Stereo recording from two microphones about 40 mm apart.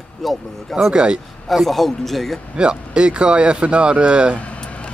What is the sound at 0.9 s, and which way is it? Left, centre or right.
Speech, right.